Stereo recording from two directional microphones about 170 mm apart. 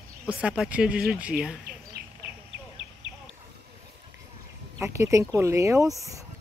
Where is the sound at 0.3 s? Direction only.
5° right (ahead or behind).